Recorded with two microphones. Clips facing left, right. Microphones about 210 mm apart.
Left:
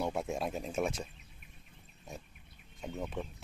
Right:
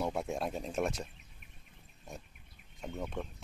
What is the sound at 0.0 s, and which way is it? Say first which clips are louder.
Speech: even; centre (ahead or behind).